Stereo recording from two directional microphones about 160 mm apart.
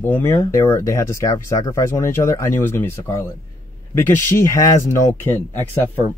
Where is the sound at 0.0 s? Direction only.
15° left (ahead or behind).